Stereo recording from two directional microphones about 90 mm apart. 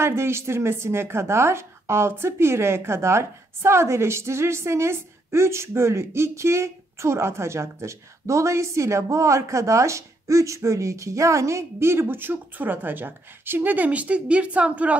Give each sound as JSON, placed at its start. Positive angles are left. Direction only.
{"t": 0.0, "sound": "speech", "side_deg": -30}